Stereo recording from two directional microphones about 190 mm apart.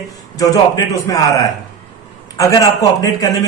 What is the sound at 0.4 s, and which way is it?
Speech, 15° left (ahead or behind).